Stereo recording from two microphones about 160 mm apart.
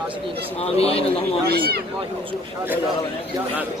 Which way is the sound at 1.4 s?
75° right (ahead or behind).